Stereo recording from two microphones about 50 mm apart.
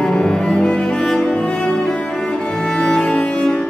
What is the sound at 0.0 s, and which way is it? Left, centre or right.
Cello, centre.